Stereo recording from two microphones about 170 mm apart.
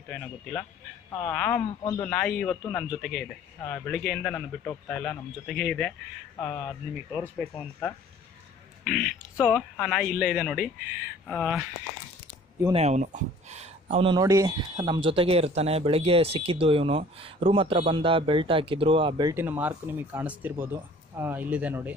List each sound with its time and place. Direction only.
0.1 s speech: 10° left (ahead or behind)
1.8 s a man's voice: 25° left (ahead or behind)
2.0 s speech: 5° left (ahead or behind)
3.0 s speech: 5° left (ahead or behind)
8.8 s a man's voice: 5° left (ahead or behind)
12.7 s speech: 40° right (ahead or behind)
14.1 s speech: 20° right (ahead or behind)
19.3 s speech: 10° right (ahead or behind)